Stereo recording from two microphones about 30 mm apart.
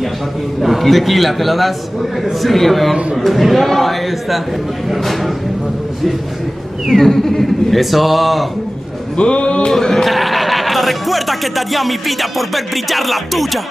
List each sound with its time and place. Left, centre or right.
0.6 s speech: centre
6.9 s speech: centre
9.1 s music: left
9.7 s bleat: centre
10.0 s speech: centre